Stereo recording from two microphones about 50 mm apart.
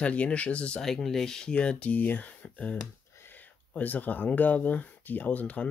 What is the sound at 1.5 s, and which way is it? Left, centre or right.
Speech, left.